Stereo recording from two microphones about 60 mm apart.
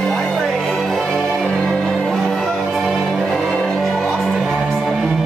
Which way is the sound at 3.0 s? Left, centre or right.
Centre.